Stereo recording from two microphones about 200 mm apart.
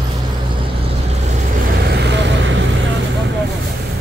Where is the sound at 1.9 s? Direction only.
60° right (ahead or behind).